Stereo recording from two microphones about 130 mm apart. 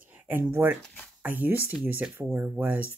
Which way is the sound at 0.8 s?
10° left (ahead or behind).